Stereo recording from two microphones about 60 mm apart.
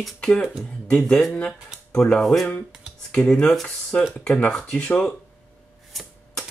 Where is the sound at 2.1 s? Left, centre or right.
Centre.